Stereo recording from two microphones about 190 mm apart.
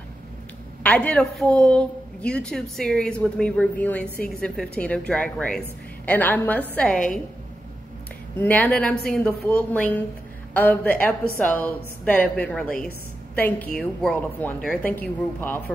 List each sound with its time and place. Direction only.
0.8 s a woman's voice: 5° left (ahead or behind)
8.4 s a woman's voice: 10° left (ahead or behind)